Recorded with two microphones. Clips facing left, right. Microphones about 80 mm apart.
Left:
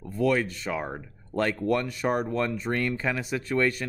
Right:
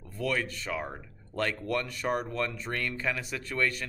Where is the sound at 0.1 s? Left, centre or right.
Left.